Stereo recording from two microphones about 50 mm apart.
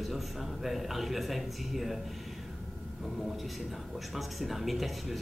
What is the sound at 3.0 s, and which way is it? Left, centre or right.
A man's voice, centre.